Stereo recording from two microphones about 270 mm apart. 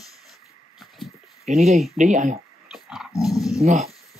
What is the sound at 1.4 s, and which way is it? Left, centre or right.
Speech, right.